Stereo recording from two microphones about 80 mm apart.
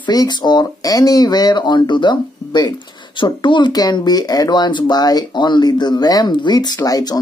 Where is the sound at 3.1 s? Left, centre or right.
Left.